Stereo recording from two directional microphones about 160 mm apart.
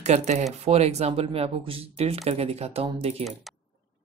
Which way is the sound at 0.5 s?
40° right (ahead or behind).